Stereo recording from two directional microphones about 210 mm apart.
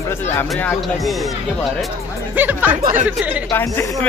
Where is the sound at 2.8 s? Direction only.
40° right (ahead or behind).